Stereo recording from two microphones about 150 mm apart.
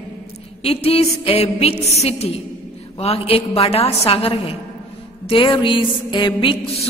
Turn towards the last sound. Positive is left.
turn(degrees=35)  # may be behind; listen again after turning